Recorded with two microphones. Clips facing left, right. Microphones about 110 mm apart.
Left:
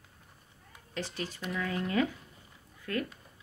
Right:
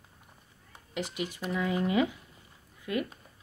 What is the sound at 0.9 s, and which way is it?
A woman's voice, 15° right (ahead or behind).